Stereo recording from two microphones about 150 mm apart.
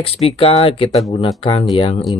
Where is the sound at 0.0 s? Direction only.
40° left (ahead or behind).